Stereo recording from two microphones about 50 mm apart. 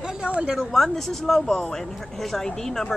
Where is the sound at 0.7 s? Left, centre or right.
Centre.